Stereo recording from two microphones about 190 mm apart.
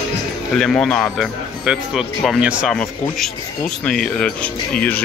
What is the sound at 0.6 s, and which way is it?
Speech, 5° left (ahead or behind).